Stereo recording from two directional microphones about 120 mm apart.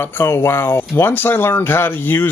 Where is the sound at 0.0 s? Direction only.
20° left (ahead or behind).